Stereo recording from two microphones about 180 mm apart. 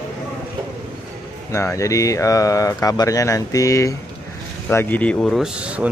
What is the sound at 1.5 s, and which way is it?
Speech, 15° left (ahead or behind).